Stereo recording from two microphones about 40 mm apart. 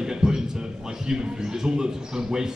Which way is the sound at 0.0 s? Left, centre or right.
Centre.